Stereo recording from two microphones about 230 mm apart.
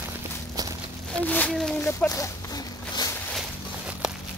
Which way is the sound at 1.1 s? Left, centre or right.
Centre.